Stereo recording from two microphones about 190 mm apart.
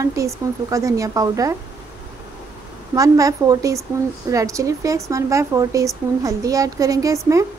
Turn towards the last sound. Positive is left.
turn(degrees=-15)  # may be behind; listen again after turning